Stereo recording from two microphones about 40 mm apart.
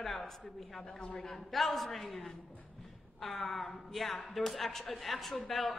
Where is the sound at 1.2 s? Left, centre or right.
Centre.